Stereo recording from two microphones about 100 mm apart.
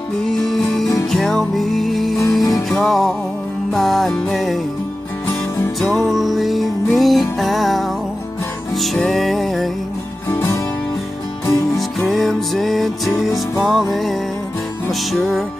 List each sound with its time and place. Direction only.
0.2 s music: 5° left (ahead or behind)
5.8 s music: centre (ahead or behind)
8.8 s music: centre (ahead or behind)
10.3 s music: 25° left (ahead or behind)
12.1 s music: 5° left (ahead or behind)